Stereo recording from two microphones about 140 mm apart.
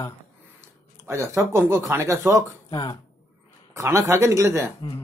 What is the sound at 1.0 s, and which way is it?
Speech, 20° right (ahead or behind).